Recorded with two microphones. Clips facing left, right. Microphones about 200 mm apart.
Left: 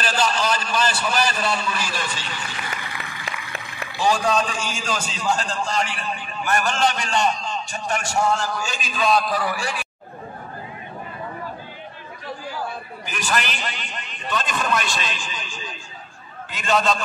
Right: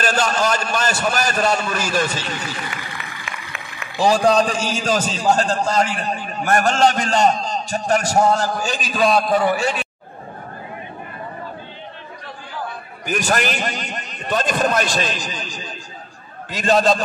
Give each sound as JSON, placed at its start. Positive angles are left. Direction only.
{"t": 0.0, "sound": "a man's voice", "side_deg": -50}
{"t": 3.3, "sound": "a sound", "side_deg": 35}
{"t": 4.0, "sound": "a man's voice", "side_deg": -40}
{"t": 13.0, "sound": "a man's voice", "side_deg": -45}